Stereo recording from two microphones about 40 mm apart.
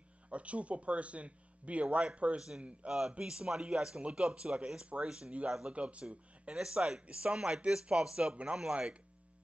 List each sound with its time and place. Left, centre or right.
0.3 s speech: right
2.9 s speech: centre; by 6.5 s right
6.5 s speech: right